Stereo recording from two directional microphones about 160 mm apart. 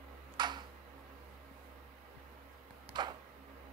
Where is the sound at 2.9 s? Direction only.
25° right (ahead or behind).